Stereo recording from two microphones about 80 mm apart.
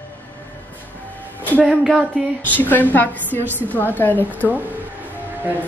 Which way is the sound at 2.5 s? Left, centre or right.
Left.